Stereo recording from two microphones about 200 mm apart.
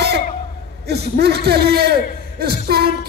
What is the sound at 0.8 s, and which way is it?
A man's voice, 55° right (ahead or behind).